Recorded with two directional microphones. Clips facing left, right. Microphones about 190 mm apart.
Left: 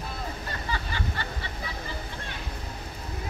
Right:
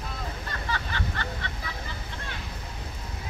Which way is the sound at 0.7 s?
10° left (ahead or behind).